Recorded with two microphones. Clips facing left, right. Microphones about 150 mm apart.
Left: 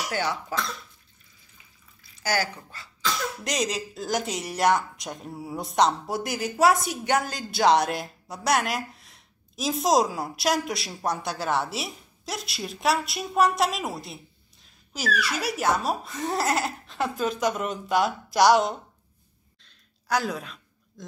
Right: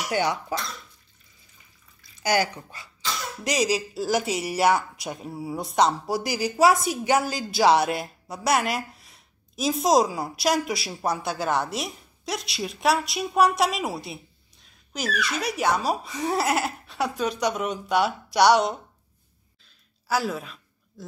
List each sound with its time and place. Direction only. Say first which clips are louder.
0.1 s speech: right 6 dB; 15° right (ahead or behind)
2.2 s speech: right 4 dB; 15° right (ahead or behind)
3.4 s speech: right 6 dB; 5° right (ahead or behind)
19.6 s a sound: left 1 dB; 5° right (ahead or behind)